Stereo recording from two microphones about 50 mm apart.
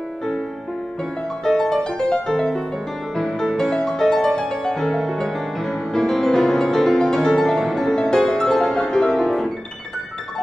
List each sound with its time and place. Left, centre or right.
1.4 s music: centre